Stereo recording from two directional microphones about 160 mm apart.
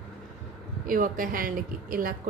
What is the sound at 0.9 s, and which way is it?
A woman's voice, 60° right (ahead or behind).